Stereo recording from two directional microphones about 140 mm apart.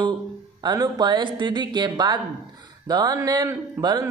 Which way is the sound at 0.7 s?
30° right (ahead or behind).